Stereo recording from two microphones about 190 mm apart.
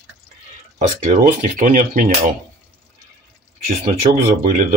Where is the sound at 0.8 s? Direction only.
40° right (ahead or behind).